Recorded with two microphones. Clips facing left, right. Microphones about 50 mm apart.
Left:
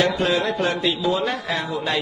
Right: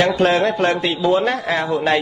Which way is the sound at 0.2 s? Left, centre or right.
Right.